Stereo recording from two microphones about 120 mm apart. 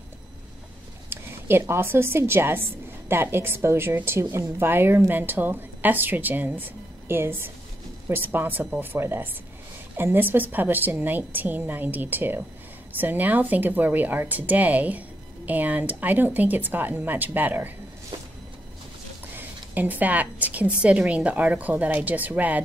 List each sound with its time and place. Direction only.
1.1 s a woman's voice: 20° right (ahead or behind)
19.3 s speech: 15° right (ahead or behind)